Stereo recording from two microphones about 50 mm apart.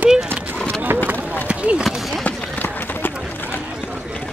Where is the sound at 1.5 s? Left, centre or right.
Right.